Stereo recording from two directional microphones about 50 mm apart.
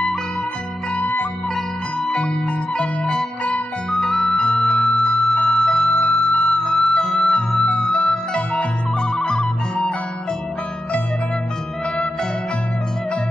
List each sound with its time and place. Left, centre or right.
0.9 s music: left
2.8 s music: centre
4.6 s music: centre
5.6 s music: centre
5.9 s music: left
6.6 s music: centre